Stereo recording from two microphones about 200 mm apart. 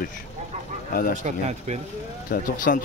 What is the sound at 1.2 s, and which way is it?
Speech, 35° right (ahead or behind).